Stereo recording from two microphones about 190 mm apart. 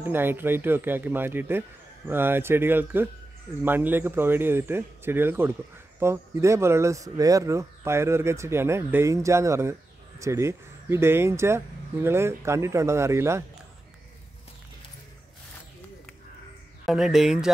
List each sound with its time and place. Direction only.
0.0 s speech: 10° right (ahead or behind)
16.8 s speech: centre (ahead or behind)